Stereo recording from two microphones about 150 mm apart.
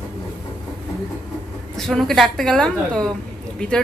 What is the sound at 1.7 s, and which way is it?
A woman's voice, centre (ahead or behind).